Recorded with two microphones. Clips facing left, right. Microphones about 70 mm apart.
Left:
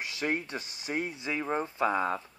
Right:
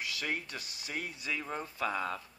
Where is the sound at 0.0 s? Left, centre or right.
Left.